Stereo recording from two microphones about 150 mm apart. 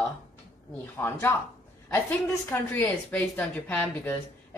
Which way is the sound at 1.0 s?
15° left (ahead or behind).